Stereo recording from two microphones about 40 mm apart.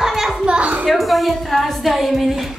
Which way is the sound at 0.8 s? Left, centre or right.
Centre.